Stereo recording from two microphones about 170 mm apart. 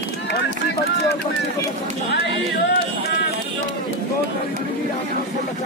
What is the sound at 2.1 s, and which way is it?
Music, 90° left.